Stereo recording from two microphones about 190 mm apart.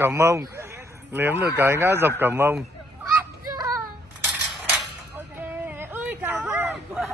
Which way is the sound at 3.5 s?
15° right (ahead or behind).